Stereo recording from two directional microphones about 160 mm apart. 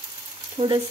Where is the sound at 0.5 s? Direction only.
30° right (ahead or behind).